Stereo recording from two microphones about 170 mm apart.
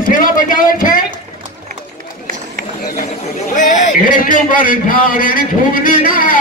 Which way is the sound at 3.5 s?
50° left (ahead or behind).